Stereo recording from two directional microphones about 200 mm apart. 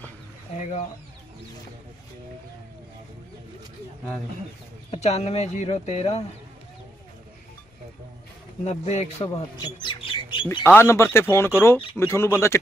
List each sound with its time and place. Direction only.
0.6 s speech: 35° left (ahead or behind)
4.9 s speech: 30° left (ahead or behind)
8.6 s speech: 35° left (ahead or behind)
10.6 s speech: 10° left (ahead or behind)